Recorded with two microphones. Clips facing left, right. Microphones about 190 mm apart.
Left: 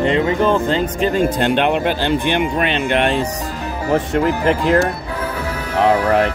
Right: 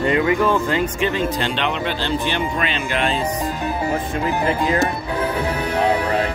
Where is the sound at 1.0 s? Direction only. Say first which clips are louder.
Left 5 dB; 50° left (ahead or behind).